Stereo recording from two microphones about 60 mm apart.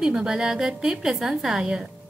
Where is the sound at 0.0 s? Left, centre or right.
Centre.